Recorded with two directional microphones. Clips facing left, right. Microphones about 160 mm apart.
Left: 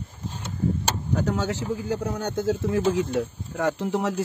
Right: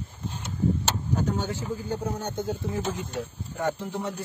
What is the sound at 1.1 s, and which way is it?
Vehicle, 80° left.